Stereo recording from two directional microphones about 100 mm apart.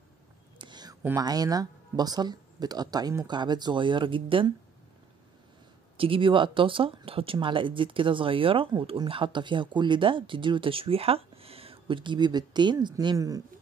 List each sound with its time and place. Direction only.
0.6 s a sound: 45° right (ahead or behind)
1.1 s speech: 40° right (ahead or behind); by 4.6 s 60° right (ahead or behind)
5.9 s speech: 65° right (ahead or behind); by 12.9 s 50° right (ahead or behind)
13.0 s speech: 40° right (ahead or behind)